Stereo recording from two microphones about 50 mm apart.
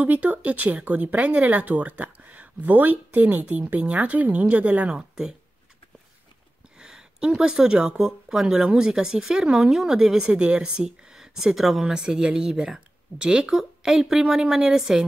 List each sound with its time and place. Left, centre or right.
0.0 s speech: right
4.8 s speech: centre
6.8 s speech: centre
11.9 s speech: centre